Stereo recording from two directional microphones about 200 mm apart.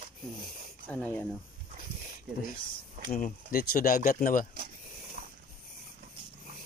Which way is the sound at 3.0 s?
40° left (ahead or behind).